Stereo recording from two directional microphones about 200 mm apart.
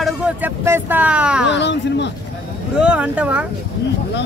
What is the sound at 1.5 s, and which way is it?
Speech, 60° left (ahead or behind).